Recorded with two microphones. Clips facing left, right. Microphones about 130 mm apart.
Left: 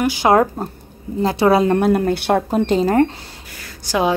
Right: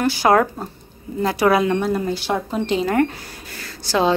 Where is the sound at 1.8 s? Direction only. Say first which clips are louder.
Left 5 dB; 60° left (ahead or behind); by 3.1 s 35° left (ahead or behind).